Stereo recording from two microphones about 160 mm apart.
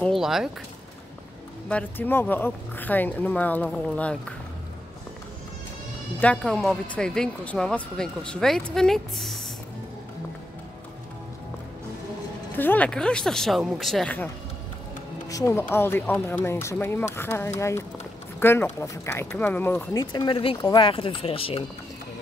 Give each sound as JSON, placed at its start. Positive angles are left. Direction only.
{"t": 0.0, "sound": "speech", "side_deg": 0}
{"t": 1.7, "sound": "speech", "side_deg": 10}
{"t": 6.1, "sound": "speech", "side_deg": 5}
{"t": 12.5, "sound": "speech", "side_deg": 10}
{"t": 15.2, "sound": "speech", "side_deg": 20}
{"t": 20.0, "sound": "speech", "side_deg": 25}